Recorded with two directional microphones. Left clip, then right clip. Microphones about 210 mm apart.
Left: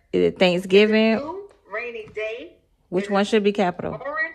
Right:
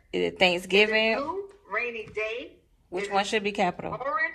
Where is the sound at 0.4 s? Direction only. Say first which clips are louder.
Left 3 dB; 55° left (ahead or behind).